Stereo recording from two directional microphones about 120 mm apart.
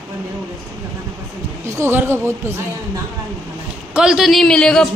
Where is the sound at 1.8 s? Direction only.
20° right (ahead or behind).